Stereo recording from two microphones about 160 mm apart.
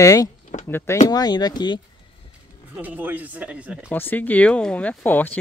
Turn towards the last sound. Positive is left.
turn(degrees=10)  # may be behind; listen again after turning